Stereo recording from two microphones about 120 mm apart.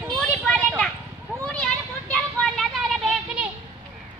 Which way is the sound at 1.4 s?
10° left (ahead or behind).